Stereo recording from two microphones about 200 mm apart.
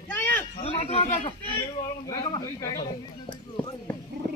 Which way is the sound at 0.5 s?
30° left (ahead or behind).